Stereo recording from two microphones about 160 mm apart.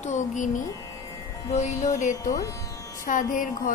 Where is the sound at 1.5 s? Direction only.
45° left (ahead or behind).